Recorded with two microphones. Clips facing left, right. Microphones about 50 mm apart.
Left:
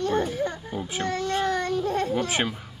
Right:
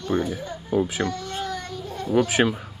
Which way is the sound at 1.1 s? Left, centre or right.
Left.